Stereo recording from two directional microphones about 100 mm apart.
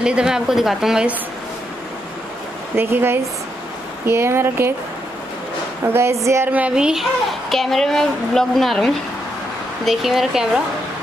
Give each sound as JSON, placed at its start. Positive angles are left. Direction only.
{"t": 0.0, "sound": "a woman's voice", "side_deg": -10}
{"t": 2.7, "sound": "speech", "side_deg": -20}
{"t": 5.9, "sound": "speech", "side_deg": -25}
{"t": 6.5, "sound": "a child's voice", "side_deg": -10}